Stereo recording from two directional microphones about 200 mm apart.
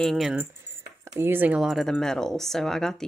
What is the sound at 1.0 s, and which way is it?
Speech, 15° right (ahead or behind).